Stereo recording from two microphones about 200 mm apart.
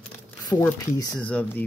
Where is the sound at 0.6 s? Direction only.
20° left (ahead or behind).